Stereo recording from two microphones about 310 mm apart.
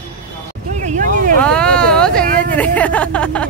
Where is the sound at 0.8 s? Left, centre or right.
Right.